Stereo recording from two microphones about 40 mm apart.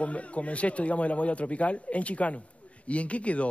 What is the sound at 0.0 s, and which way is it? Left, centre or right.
Speech, left.